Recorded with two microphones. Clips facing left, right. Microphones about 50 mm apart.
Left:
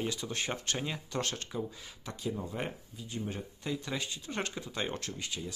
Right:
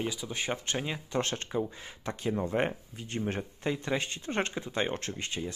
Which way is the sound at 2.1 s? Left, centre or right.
Right.